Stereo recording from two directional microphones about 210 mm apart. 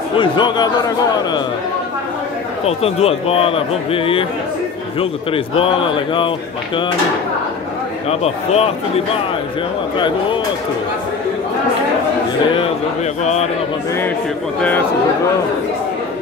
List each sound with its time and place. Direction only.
0.2 s a man's voice: 20° left (ahead or behind)
2.6 s a man's voice: 30° left (ahead or behind)
5.3 s a man's voice: 25° left (ahead or behind)
8.1 s a man's voice: 30° left (ahead or behind)
13.2 s speech: 30° left (ahead or behind)